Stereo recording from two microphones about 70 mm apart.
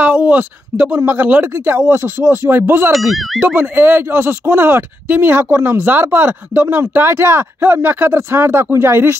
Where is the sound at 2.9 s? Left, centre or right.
Centre.